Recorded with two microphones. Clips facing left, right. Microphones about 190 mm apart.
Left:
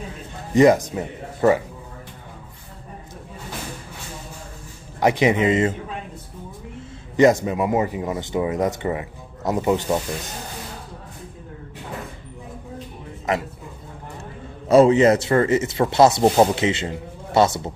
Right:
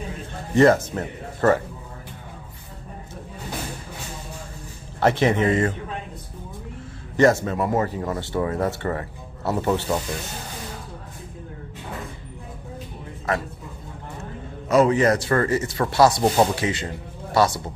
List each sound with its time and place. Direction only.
0.6 s speech: 15° left (ahead or behind)
5.0 s speech: 15° left (ahead or behind)
7.2 s speech: 15° left (ahead or behind)
13.3 s speech: 20° left (ahead or behind)
14.7 s speech: 25° left (ahead or behind)